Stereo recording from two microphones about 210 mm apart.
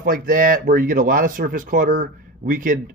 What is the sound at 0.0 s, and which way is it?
Speech, 40° right (ahead or behind).